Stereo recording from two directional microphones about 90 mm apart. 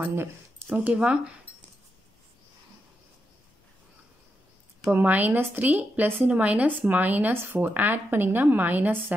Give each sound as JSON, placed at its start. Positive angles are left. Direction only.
{"t": 0.0, "sound": "a woman's voice", "side_deg": -25}
{"t": 4.9, "sound": "a woman's voice", "side_deg": -20}